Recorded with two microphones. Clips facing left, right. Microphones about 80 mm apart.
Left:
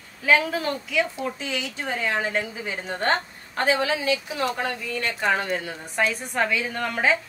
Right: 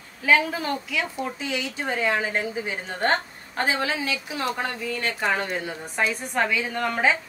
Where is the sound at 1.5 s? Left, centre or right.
Right.